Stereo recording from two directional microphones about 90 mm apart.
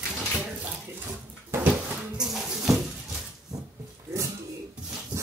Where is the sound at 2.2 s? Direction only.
5° right (ahead or behind).